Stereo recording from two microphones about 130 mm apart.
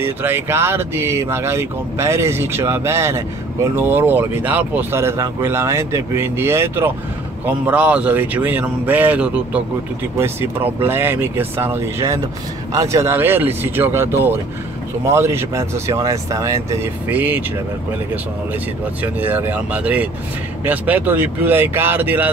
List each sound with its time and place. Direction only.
0.0 s speech: 15° right (ahead or behind)
17.1 s speech: 15° right (ahead or behind)
19.1 s speech: 15° right (ahead or behind)